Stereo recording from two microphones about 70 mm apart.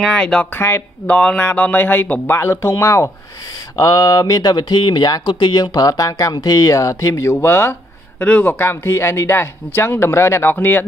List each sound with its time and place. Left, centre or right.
0.0 s speech: centre
0.6 s speech: left
1.0 s speech: centre
2.3 s speech: left
3.7 s speech: left